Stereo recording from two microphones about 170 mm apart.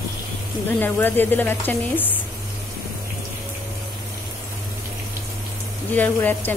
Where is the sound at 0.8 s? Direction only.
10° left (ahead or behind).